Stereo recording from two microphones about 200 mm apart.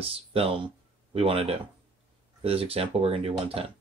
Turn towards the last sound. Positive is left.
turn(degrees=-30)  # may be behind; listen again after turning